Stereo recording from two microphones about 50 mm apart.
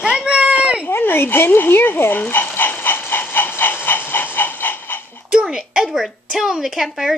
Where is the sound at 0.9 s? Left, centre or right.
Left.